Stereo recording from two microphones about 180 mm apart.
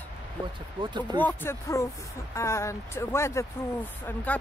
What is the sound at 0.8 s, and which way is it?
Speech, 25° right (ahead or behind).